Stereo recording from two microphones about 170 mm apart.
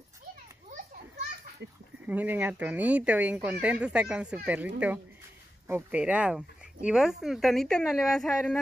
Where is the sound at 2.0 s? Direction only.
10° right (ahead or behind).